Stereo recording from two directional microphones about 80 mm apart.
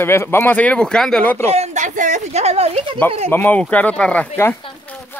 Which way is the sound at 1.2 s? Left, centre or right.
Left.